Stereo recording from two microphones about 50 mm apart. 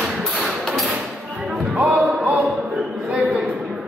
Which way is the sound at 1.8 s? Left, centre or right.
Right.